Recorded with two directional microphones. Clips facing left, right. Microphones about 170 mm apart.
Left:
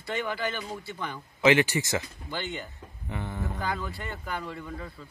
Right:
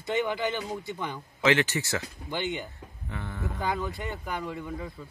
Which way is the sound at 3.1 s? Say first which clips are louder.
Left 2 dB; 20° left (ahead or behind).